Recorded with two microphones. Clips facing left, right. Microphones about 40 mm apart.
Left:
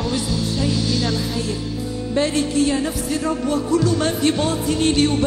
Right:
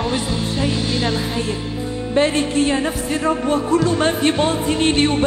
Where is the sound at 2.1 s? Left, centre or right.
Right.